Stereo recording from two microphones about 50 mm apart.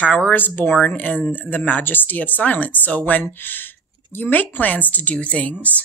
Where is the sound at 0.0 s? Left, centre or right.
Left.